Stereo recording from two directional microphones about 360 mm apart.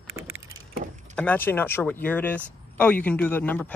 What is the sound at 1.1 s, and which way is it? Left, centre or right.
Speech, centre.